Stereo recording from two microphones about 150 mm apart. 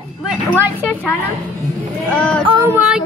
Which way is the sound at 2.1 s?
5° left (ahead or behind).